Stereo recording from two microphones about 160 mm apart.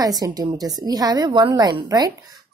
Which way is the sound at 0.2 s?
25° right (ahead or behind).